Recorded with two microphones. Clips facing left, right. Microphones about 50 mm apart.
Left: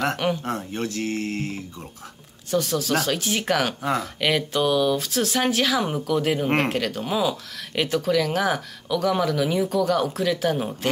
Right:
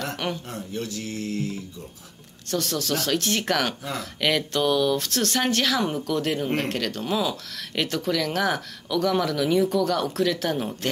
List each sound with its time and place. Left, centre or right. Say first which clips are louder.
0.5 s speech: left 4 dB; left
2.5 s speech: left 4 dB; centre